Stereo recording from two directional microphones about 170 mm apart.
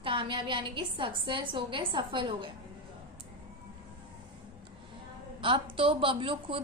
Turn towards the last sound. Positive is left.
turn(degrees=-30)  # may be behind; listen again after turning